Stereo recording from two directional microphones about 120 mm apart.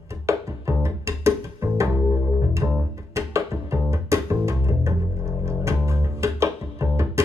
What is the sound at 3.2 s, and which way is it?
Music, 25° right (ahead or behind).